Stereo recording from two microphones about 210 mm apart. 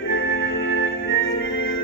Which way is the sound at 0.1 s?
65° left (ahead or behind).